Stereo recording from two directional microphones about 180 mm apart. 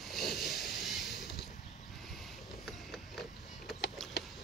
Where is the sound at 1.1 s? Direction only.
70° left (ahead or behind).